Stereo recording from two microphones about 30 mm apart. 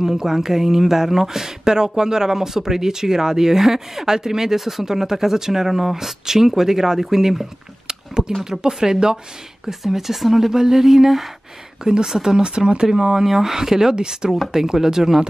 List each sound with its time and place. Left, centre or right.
0.0 s speech: centre
4.6 s speech: centre
4.8 s speech: centre
8.5 s speech: centre
11.8 s speech: right
12.4 s speech: right
13.2 s speech: centre